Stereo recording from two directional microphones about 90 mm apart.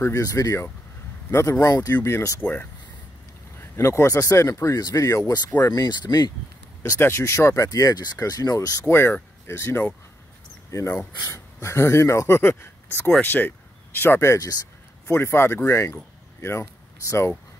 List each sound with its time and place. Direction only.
0.1 s speech: 40° left (ahead or behind)
2.0 s speech: 30° left (ahead or behind)
3.7 s speech: 30° left (ahead or behind)
8.8 s speech: 25° left (ahead or behind)